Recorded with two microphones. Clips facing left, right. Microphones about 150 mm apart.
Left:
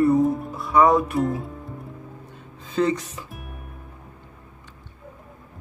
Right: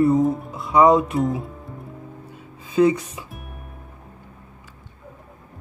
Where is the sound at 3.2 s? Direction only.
Centre (ahead or behind).